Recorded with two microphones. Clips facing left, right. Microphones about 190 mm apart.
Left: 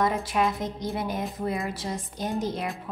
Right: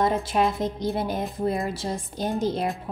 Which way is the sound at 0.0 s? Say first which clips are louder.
Right 2 dB; 25° right (ahead or behind).